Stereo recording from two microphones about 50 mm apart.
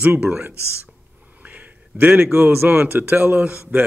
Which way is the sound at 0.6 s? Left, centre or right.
Left.